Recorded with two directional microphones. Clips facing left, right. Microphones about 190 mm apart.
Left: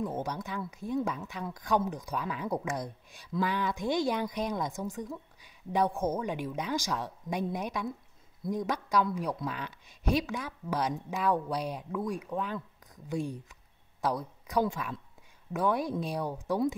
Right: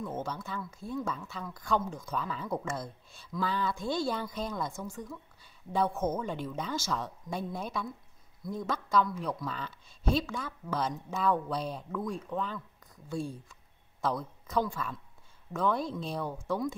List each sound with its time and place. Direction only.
0.0 s speech: 15° left (ahead or behind)